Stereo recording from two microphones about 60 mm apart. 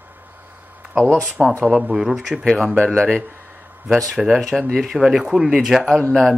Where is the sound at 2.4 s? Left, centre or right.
Centre.